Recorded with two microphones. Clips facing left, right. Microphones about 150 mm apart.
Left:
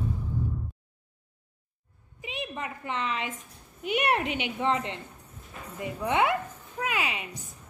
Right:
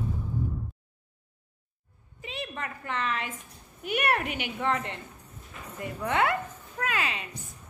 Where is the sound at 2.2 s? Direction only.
15° left (ahead or behind).